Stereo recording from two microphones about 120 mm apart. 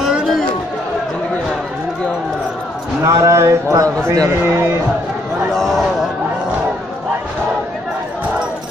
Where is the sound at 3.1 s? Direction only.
25° right (ahead or behind).